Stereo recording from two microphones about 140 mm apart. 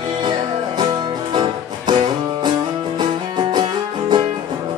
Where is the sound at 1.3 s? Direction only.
30° right (ahead or behind).